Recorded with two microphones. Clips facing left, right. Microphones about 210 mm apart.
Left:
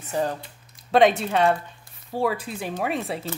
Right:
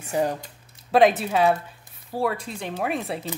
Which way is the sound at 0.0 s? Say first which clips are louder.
Right 2 dB; 15° right (ahead or behind).